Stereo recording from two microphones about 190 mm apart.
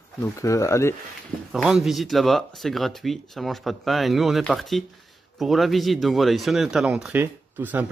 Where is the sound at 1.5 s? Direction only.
Centre (ahead or behind).